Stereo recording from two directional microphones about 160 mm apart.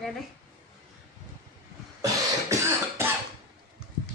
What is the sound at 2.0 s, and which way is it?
Cough, 15° right (ahead or behind).